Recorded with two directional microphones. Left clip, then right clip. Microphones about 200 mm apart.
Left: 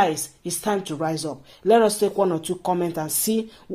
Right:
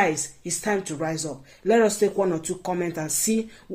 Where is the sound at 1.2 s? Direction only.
25° left (ahead or behind).